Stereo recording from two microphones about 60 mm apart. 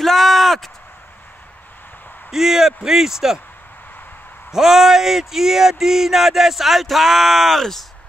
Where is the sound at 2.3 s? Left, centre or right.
Centre.